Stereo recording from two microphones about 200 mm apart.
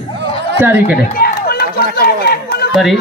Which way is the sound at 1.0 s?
50° left (ahead or behind).